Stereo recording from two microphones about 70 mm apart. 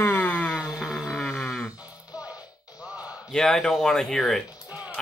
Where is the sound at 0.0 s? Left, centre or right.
Left.